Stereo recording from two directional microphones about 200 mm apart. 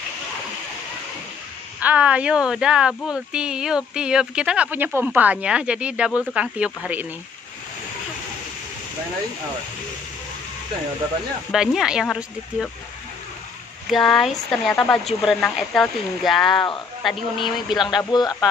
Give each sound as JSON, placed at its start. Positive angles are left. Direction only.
{"t": 1.8, "sound": "speech", "side_deg": -5}
{"t": 11.5, "sound": "speech", "side_deg": -5}
{"t": 13.8, "sound": "speech", "side_deg": 0}
{"t": 18.1, "sound": "speech", "side_deg": 20}